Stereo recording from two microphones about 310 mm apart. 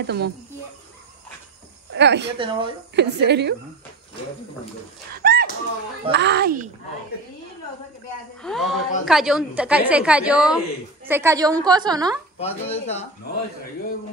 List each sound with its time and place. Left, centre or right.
0.0 s a woman's voice: right
1.9 s speech: right
2.3 s a woman's voice: centre
3.0 s a woman's voice: right
5.1 s a sound: right
6.1 s a woman's voice: right
8.4 s a woman's voice: centre
12.4 s speech: centre